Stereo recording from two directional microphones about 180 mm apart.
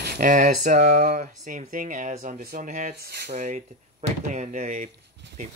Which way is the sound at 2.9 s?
65° right (ahead or behind).